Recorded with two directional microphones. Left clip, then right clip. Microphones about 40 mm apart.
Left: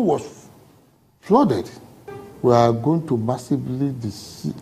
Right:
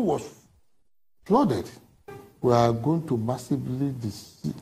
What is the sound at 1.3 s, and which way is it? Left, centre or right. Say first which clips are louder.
Music: left 6 dB; left.